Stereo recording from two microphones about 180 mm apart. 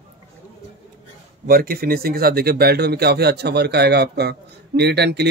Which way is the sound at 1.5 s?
55° right (ahead or behind).